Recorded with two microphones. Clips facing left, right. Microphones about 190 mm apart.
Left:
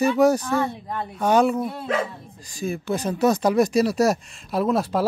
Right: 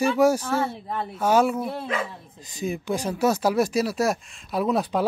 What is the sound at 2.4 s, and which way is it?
Speech, 20° right (ahead or behind).